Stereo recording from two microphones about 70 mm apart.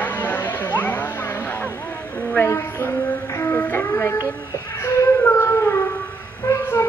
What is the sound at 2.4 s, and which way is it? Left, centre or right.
Child singing, left.